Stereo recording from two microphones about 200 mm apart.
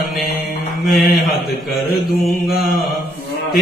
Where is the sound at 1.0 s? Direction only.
50° left (ahead or behind).